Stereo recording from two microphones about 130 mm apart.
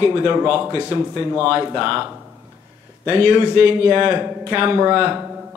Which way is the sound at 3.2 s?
20° left (ahead or behind).